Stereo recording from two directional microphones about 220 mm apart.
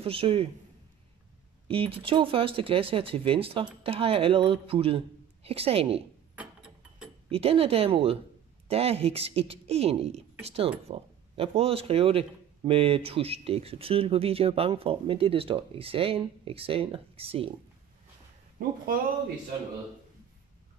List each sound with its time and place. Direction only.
0.0 s speech: 25° right (ahead or behind)
1.7 s speech: 25° right (ahead or behind)
6.3 s mechanisms: 5° right (ahead or behind)
7.2 s speech: 25° right (ahead or behind)